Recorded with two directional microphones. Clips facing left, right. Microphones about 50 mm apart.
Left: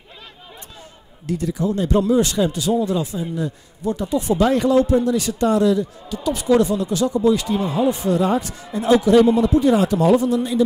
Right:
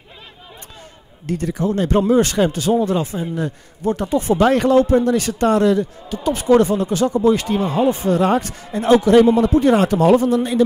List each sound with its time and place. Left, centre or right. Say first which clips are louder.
1.2 s speech: right 1 dB; right
6.1 s speech: right 3 dB; right
7.8 s speech: right 2 dB; right
8.1 s speech: right 2 dB; right